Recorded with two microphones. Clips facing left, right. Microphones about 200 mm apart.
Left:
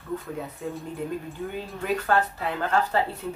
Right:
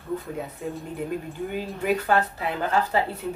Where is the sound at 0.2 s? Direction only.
Centre (ahead or behind).